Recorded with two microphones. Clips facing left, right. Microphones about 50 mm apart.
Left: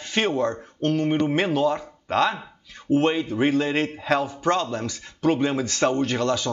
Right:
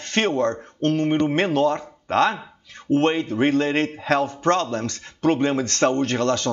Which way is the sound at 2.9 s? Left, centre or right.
Right.